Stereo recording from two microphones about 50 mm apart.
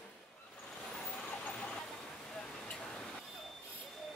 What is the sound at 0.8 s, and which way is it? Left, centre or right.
Vehicle, left.